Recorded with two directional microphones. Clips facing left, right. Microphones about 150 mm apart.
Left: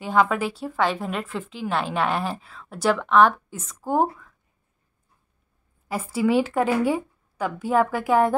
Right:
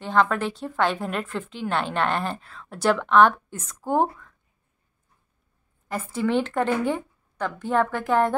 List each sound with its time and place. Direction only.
0.0 s a woman's voice: 5° left (ahead or behind)
5.9 s a woman's voice: 5° left (ahead or behind)